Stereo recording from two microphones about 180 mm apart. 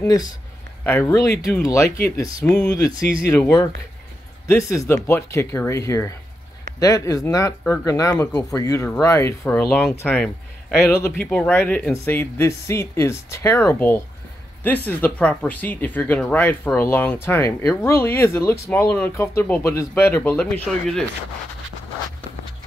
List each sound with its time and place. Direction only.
0.0 s speech: 20° left (ahead or behind); by 21.0 s 5° left (ahead or behind)